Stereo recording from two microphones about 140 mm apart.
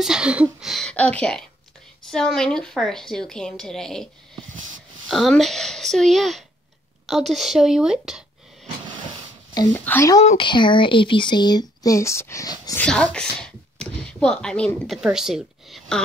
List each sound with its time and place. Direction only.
0.0 s a woman's voice: 5° right (ahead or behind)
9.7 s speech: 15° left (ahead or behind)
10.3 s speech: 35° left (ahead or behind)
12.7 s a woman's voice: 5° left (ahead or behind)